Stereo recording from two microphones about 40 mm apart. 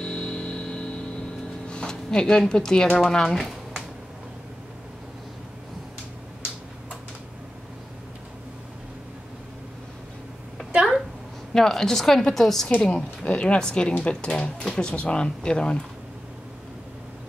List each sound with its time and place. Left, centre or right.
0.0 s vehicle: left
1.7 s speech: centre
11.5 s a woman's voice: centre
12.9 s speech: left